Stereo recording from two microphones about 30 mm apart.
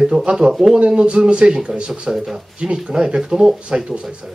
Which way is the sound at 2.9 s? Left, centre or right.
Right.